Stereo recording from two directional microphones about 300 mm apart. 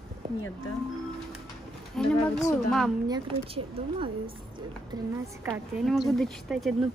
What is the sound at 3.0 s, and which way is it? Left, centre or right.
Speech, centre.